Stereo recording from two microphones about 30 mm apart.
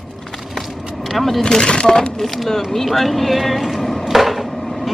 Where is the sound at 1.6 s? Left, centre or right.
Left.